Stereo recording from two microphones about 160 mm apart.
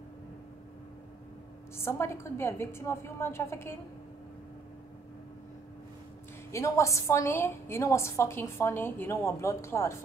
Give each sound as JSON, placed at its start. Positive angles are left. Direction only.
{"t": 1.8, "sound": "a woman's voice", "side_deg": 15}
{"t": 6.5, "sound": "a woman's voice", "side_deg": 20}